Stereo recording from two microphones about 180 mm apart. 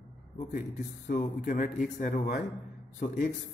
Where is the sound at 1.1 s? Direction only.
50° left (ahead or behind).